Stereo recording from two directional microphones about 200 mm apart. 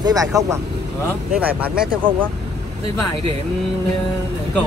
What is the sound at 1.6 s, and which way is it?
Speech, 5° right (ahead or behind).